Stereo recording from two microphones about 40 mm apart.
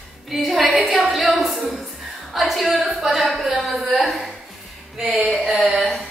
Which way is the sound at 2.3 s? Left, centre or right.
Centre.